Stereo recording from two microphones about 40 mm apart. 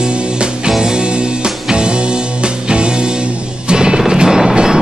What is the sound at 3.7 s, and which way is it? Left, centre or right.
Music, centre.